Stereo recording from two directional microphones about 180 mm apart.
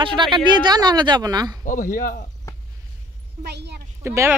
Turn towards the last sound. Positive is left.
turn(degrees=-15)  # may be behind; listen again after turning